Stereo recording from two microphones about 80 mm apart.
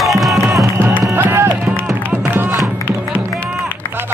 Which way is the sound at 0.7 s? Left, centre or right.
Right.